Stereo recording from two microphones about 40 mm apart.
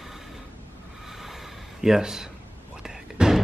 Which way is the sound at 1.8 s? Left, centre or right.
Centre.